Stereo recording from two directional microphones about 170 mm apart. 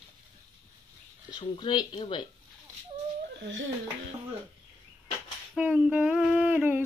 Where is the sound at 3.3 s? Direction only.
90° right.